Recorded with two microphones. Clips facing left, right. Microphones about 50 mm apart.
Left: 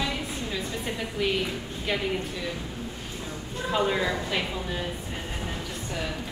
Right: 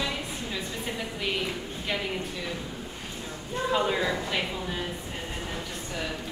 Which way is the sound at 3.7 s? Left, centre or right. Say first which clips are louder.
Left 1 dB; centre.